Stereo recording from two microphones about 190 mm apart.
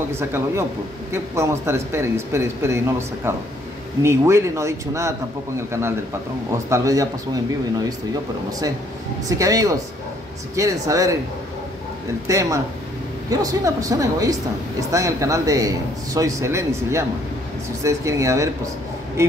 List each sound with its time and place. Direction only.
0.1 s speech: 15° right (ahead or behind)
8.5 s speech: 20° right (ahead or behind)
12.3 s speech: 15° right (ahead or behind)